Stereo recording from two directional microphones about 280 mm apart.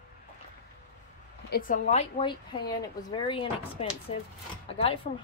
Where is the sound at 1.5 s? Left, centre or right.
Left.